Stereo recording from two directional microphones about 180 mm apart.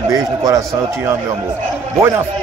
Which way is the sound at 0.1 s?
20° right (ahead or behind).